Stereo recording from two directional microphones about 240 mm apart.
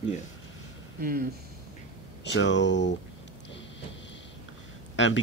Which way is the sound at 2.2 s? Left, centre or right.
Left.